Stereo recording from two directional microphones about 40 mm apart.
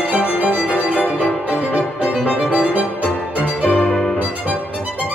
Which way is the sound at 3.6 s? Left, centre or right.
Left.